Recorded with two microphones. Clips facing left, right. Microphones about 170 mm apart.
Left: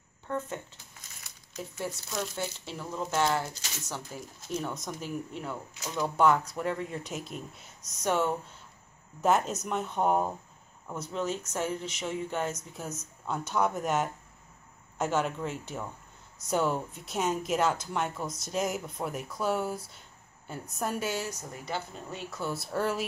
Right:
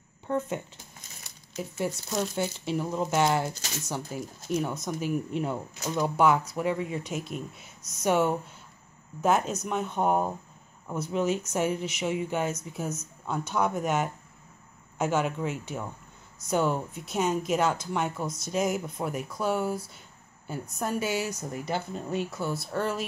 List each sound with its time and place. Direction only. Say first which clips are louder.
0.3 s speech: right 5 dB; 15° right (ahead or behind)
2.3 s speech: right 7 dB; 15° right (ahead or behind)
5.3 s speech: right 7 dB; 20° right (ahead or behind)
5.9 s speech: right 1 dB; 10° right (ahead or behind)
21.3 s speech: right 5 dB; 15° right (ahead or behind)
22.4 s speech: right 1 dB; 5° left (ahead or behind)